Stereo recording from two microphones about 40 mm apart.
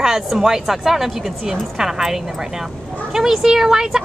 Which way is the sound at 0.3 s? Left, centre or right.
Centre.